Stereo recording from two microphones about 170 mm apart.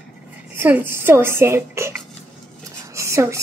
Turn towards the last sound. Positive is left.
turn(degrees=-15)  # may be behind; listen again after turning